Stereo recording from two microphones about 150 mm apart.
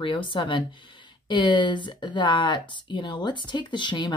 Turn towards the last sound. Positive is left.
turn(degrees=30)  # may be behind; listen again after turning